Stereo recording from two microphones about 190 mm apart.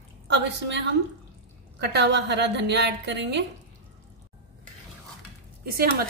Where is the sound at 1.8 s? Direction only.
60° right (ahead or behind).